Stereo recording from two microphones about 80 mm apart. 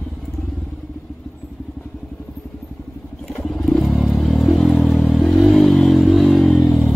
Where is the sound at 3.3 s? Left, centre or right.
Centre.